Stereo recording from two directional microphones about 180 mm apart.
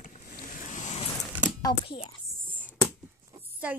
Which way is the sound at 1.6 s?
30° left (ahead or behind).